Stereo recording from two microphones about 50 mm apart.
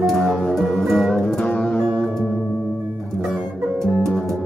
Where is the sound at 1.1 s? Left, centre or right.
Centre.